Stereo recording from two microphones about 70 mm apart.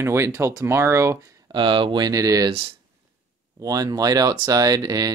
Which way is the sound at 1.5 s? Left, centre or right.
Right.